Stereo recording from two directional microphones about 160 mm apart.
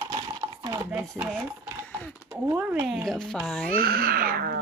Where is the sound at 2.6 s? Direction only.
10° right (ahead or behind).